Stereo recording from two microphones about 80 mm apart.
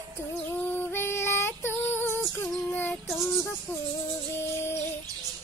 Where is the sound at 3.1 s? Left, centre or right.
Centre.